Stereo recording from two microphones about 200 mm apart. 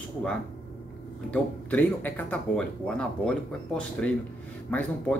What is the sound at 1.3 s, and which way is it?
A man's voice, 10° left (ahead or behind).